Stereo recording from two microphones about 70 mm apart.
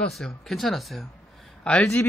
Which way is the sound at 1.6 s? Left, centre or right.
Centre.